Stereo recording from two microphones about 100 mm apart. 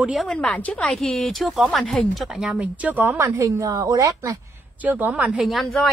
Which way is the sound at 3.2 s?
30° right (ahead or behind).